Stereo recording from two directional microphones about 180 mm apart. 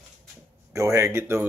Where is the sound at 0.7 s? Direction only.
15° right (ahead or behind).